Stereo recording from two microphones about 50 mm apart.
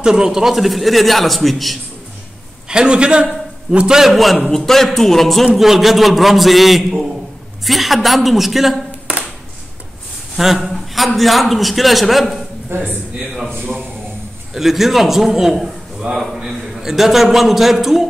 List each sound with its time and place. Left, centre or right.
0.0 s a man's voice: centre
2.7 s a man's voice: centre
4.1 s a man's voice: centre
10.3 s a sound: centre
11.1 s a man's voice: centre
12.6 s speech: right
13.2 s a man's voice: centre
13.6 s a man's voice: centre
14.5 s a man's voice: centre